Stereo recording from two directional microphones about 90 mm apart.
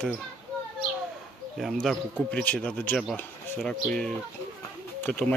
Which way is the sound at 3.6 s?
10° left (ahead or behind).